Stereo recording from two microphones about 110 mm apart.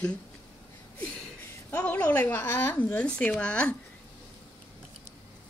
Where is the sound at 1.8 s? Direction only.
15° left (ahead or behind).